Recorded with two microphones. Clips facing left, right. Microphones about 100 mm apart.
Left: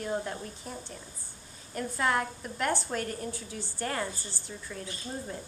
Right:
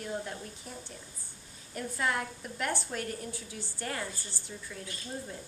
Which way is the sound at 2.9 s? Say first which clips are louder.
Left 3 dB; 5° right (ahead or behind).